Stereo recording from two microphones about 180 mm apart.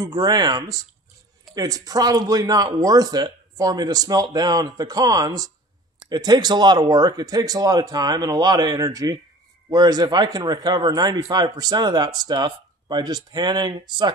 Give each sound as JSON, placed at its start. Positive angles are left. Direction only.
{"t": 0.0, "sound": "a man's voice", "side_deg": -20}